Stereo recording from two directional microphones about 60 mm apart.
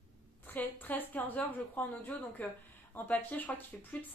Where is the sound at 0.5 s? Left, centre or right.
Left.